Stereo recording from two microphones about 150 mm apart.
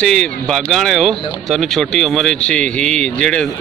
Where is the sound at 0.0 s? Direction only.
5° left (ahead or behind).